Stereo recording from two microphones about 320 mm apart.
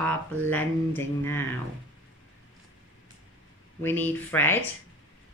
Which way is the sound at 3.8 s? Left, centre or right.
Centre.